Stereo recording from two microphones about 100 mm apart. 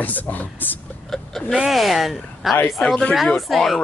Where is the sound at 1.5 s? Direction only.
5° right (ahead or behind).